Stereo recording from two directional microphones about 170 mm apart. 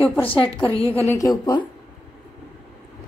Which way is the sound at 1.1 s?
20° left (ahead or behind).